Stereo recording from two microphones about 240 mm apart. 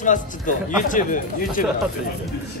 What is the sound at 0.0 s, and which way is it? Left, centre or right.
Speech, left.